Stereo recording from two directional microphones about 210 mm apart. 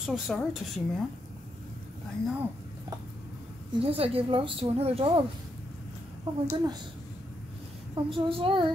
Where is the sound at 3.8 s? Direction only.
25° right (ahead or behind).